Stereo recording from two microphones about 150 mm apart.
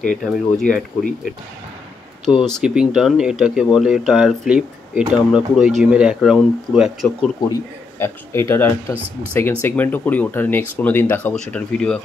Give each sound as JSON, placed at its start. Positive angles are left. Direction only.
{"t": 0.0, "sound": "speech", "side_deg": 0}
{"t": 2.2, "sound": "speech", "side_deg": 5}
{"t": 8.0, "sound": "speech", "side_deg": 15}